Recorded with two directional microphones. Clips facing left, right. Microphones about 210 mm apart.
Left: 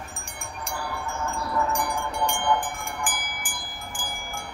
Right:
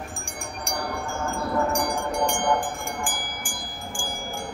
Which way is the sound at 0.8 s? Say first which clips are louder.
Right 2 dB; 45° right (ahead or behind).